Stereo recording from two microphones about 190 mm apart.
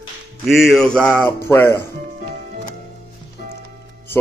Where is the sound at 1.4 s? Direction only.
15° left (ahead or behind).